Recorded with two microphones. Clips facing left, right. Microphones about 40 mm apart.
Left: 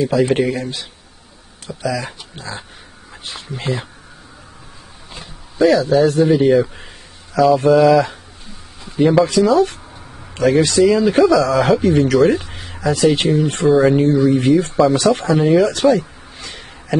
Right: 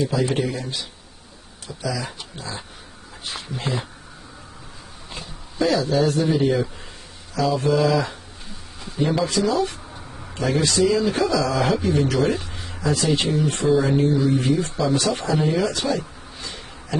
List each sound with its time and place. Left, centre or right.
0.1 s speech: left
5.2 s a sound: left
6.0 s speech: left
10.3 s speech: left
11.3 s speech: left
12.4 s a sound: left
12.8 s speech: left
13.8 s speech: left